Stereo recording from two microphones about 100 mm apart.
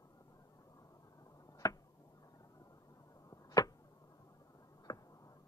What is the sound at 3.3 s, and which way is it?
Arrow, 35° left (ahead or behind).